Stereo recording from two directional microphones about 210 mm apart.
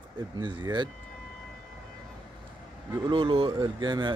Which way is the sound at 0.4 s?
20° right (ahead or behind).